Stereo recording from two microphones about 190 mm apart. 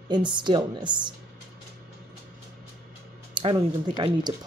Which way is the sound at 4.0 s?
25° right (ahead or behind).